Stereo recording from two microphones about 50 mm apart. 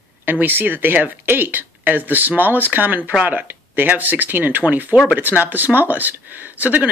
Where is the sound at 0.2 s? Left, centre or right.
Right.